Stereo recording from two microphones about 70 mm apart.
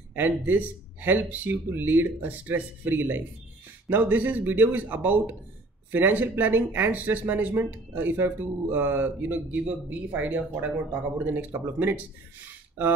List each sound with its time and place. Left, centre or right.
0.1 s speech: right